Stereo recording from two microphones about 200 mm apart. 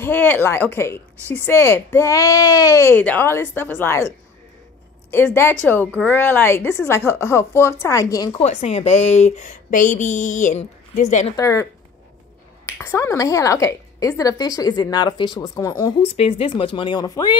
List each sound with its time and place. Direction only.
0.0 s a woman's voice: 10° left (ahead or behind)
5.1 s a woman's voice: 10° left (ahead or behind)
8.4 s a woman's voice: 35° left (ahead or behind)
11.3 s a woman's voice: 15° left (ahead or behind)
12.8 s a woman's voice: 15° left (ahead or behind)